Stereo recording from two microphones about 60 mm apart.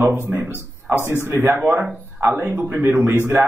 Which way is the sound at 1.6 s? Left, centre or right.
Right.